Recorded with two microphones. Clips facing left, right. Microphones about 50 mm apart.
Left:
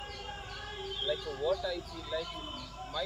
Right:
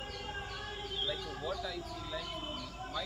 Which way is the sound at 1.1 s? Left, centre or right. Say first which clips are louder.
Left 6 dB; centre.